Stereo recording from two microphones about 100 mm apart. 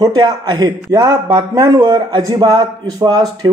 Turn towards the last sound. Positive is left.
turn(degrees=-45)  # may be behind; listen again after turning